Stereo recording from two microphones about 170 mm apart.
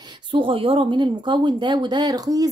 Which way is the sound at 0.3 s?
30° right (ahead or behind).